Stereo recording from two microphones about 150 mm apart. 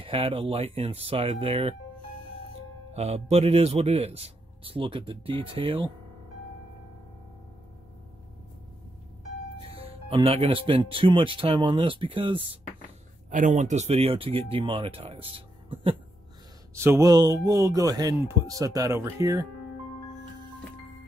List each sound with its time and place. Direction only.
0.0 s speech: 40° right (ahead or behind)
2.9 s speech: 45° right (ahead or behind)
9.8 s speech: 40° right (ahead or behind)
13.3 s speech: 60° right (ahead or behind); by 16.0 s 35° right (ahead or behind)
16.7 s speech: 15° right (ahead or behind)